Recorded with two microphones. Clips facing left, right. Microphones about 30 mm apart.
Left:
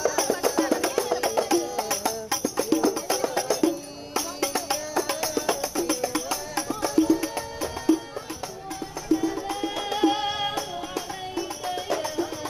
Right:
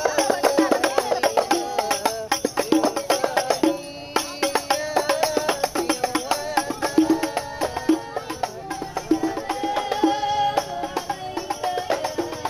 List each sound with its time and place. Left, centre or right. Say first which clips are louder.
0.0 s music: right 4 dB; right
11.0 s music: right 3 dB; right